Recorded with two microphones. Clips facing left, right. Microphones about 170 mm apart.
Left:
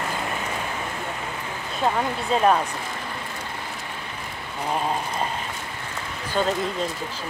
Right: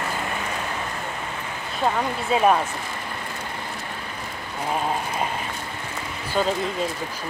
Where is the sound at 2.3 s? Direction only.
5° right (ahead or behind).